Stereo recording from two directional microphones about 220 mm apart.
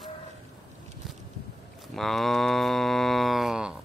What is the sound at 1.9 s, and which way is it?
Cattle, centre (ahead or behind).